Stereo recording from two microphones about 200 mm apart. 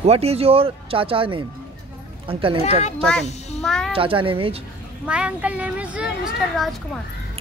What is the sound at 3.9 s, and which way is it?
Speech, 25° right (ahead or behind).